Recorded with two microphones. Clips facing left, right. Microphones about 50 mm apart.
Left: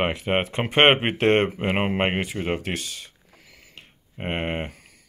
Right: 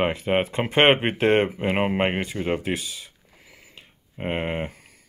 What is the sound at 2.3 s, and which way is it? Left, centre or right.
Speech, centre.